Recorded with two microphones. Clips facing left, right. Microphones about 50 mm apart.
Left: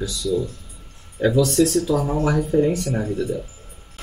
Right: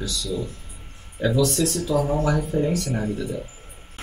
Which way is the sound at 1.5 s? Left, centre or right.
Left.